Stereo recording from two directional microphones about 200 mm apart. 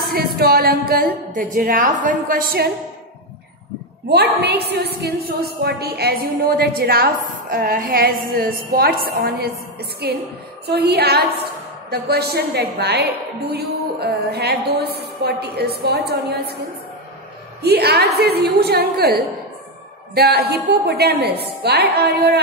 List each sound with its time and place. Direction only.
0.1 s a woman's voice: 50° right (ahead or behind)
4.1 s a woman's voice: 55° right (ahead or behind)
17.6 s a woman's voice: 55° right (ahead or behind)